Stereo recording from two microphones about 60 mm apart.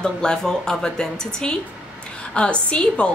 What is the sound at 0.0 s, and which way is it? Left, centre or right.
A woman's voice, centre.